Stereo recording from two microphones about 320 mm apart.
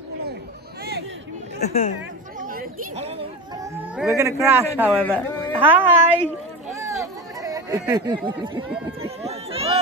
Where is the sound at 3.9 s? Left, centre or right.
Centre.